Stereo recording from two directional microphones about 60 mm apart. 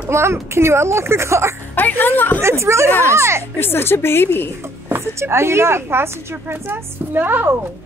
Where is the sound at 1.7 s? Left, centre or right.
Left.